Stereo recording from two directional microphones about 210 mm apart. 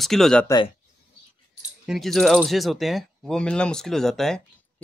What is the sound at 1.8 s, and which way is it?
Speech, centre (ahead or behind).